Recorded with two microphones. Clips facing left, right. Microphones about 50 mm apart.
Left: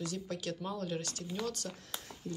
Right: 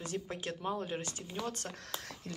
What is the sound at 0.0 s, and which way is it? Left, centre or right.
Speech, right.